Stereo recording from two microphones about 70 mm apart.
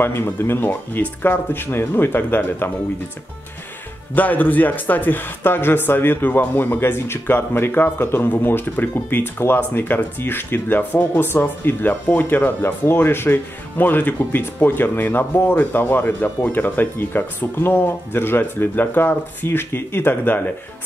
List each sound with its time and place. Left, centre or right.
0.0 s speech: left
4.1 s speech: left